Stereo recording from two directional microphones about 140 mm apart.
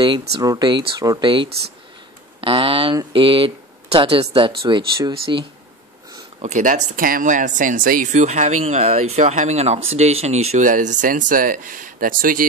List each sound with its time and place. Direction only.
0.0 s speech: 30° right (ahead or behind)
6.4 s speech: 60° right (ahead or behind); by 12.4 s 85° right